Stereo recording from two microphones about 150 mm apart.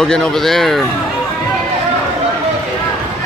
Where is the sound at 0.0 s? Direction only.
5° left (ahead or behind).